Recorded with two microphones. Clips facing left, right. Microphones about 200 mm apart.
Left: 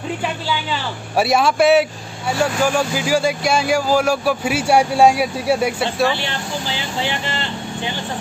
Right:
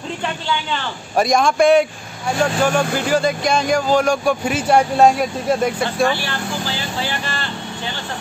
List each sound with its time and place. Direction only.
1.1 s speech: 5° left (ahead or behind)
6.1 s speech: 20° left (ahead or behind)